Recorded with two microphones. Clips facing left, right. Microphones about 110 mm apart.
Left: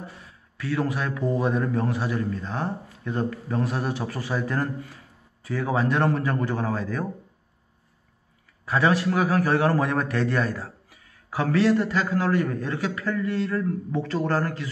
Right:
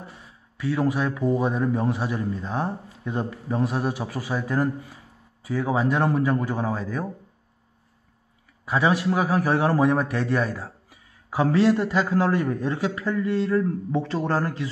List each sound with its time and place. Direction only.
0.6 s a man's voice: 15° right (ahead or behind)
8.6 s a man's voice: 10° right (ahead or behind)